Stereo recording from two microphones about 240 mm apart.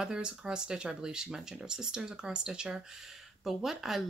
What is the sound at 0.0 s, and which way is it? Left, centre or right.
Speech, centre.